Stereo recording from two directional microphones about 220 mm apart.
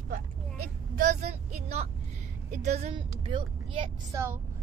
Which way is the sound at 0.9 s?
35° right (ahead or behind).